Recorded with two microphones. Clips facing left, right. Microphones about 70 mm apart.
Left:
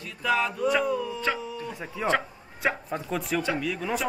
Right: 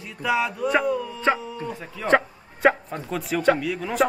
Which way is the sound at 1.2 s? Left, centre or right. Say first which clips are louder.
Right 6 dB; right.